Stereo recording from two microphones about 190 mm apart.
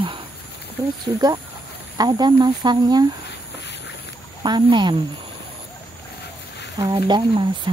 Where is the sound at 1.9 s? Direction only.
20° right (ahead or behind).